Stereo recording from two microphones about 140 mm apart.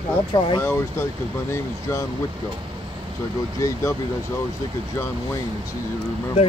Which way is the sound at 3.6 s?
25° left (ahead or behind).